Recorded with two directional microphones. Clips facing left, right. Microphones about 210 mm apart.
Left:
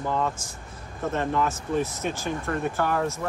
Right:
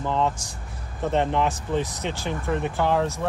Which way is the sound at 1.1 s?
20° right (ahead or behind).